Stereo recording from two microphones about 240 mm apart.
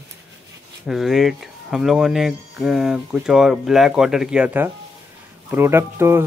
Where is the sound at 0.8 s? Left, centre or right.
Centre.